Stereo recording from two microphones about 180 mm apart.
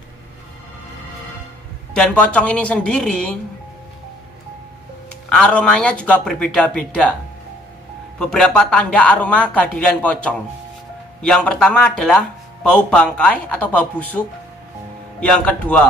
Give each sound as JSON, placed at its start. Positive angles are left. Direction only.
{"t": 2.0, "sound": "speech", "side_deg": 5}
{"t": 5.3, "sound": "speech", "side_deg": 5}
{"t": 8.2, "sound": "speech", "side_deg": 5}